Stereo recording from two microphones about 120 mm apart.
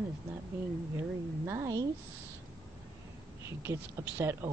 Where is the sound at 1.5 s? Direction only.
25° right (ahead or behind).